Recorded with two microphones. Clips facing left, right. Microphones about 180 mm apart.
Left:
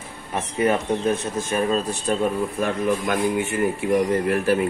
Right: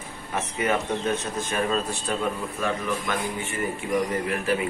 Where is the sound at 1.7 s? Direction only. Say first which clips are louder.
Left 4 dB; 20° left (ahead or behind).